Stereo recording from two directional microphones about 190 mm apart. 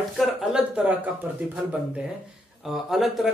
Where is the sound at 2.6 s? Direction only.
Centre (ahead or behind).